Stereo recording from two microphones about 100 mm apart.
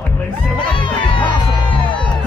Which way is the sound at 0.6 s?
55° left (ahead or behind).